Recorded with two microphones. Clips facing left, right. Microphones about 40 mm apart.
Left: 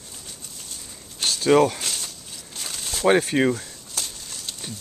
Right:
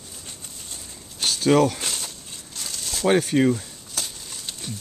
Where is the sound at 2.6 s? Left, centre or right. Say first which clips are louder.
Left 1 dB; left.